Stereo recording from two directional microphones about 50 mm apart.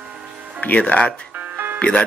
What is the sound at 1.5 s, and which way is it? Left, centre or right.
Music, right.